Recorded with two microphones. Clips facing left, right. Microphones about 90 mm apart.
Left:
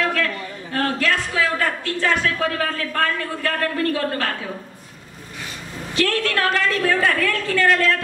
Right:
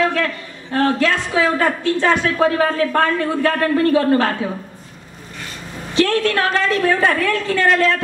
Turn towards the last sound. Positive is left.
turn(degrees=-20)  # may be behind; listen again after turning